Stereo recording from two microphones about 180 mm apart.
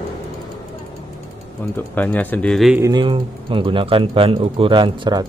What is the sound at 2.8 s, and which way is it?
Speech, 25° right (ahead or behind).